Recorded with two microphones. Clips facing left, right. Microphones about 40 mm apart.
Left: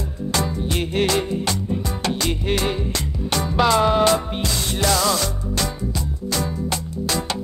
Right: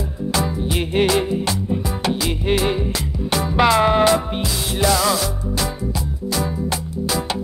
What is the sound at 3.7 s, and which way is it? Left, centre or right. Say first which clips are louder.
Music: right 1 dB; centre.